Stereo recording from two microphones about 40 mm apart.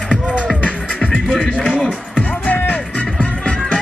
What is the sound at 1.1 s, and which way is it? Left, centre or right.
Music, left.